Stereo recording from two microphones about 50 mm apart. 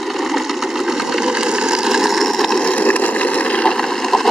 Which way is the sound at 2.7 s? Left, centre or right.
Left.